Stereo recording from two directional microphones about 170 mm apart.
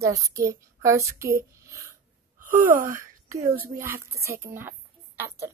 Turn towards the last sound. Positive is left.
turn(degrees=-15)  # may be behind; listen again after turning